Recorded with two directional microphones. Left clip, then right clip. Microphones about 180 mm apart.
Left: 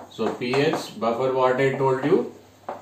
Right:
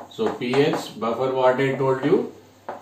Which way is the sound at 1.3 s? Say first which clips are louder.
Right 3 dB; 10° left (ahead or behind).